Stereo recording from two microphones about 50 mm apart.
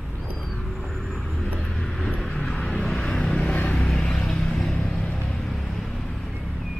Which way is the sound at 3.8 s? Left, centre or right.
Centre.